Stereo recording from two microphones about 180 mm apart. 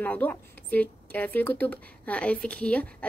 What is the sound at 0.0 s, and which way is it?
Speech, 10° left (ahead or behind).